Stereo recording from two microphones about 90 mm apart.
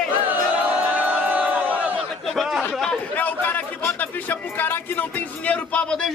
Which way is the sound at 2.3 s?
Centre (ahead or behind).